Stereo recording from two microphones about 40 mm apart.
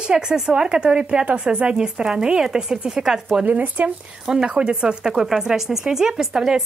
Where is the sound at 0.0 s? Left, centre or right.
Right.